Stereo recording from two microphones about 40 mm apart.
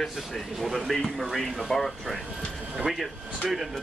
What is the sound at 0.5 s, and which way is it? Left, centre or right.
Speech, centre.